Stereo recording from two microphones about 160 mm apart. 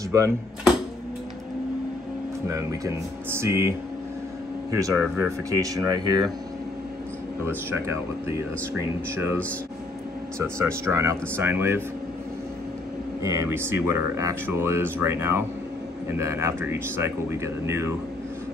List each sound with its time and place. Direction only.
2.4 s speech: 20° right (ahead or behind)
4.7 s speech: 15° right (ahead or behind)
7.4 s speech: 15° right (ahead or behind)
10.4 s speech: 15° right (ahead or behind)
13.2 s speech: 20° right (ahead or behind)